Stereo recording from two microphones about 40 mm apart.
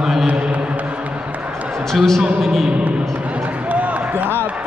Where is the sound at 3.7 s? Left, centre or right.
Right.